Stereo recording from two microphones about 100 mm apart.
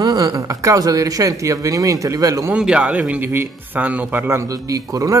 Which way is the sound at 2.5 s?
10° right (ahead or behind).